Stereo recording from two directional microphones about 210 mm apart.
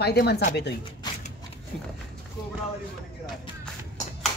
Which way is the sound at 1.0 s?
20° left (ahead or behind).